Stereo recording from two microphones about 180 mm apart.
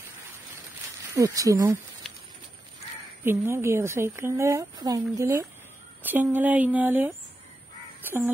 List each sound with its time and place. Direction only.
1.1 s speech: 20° right (ahead or behind)
3.3 s speech: 15° right (ahead or behind)
8.0 s crow: 10° right (ahead or behind)